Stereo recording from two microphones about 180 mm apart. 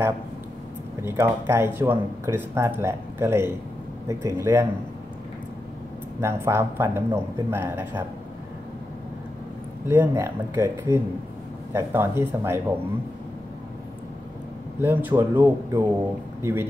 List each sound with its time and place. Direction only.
1.0 s speech: 15° right (ahead or behind)
6.2 s speech: 15° right (ahead or behind)
9.8 s speech: 15° right (ahead or behind)
14.8 s speech: 10° right (ahead or behind)